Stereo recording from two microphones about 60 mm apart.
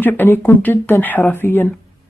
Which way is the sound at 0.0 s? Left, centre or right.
Left.